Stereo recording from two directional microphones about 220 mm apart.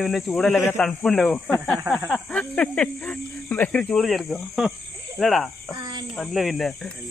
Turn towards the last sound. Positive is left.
turn(degrees=0)  # may be behind; listen again after turning